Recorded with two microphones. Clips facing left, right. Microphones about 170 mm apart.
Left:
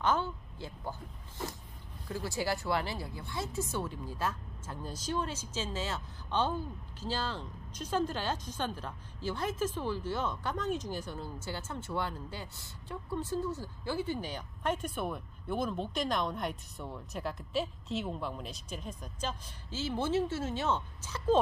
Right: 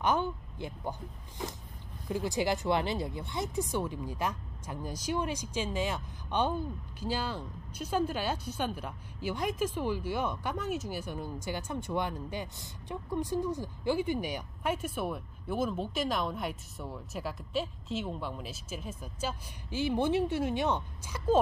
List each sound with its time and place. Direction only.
0.0 s speech: 15° right (ahead or behind)
2.0 s speech: 20° right (ahead or behind)